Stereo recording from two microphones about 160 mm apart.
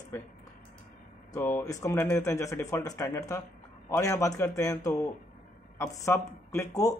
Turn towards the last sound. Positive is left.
turn(degrees=20)  # may be behind; listen again after turning